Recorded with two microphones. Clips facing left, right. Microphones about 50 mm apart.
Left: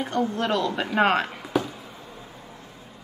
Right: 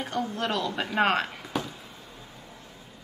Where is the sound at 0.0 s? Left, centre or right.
Centre.